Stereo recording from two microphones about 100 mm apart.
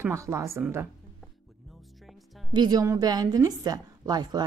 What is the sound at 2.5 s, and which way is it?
A woman's voice, 45° right (ahead or behind).